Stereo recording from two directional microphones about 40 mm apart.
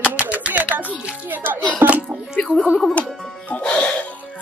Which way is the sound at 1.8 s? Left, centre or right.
Right.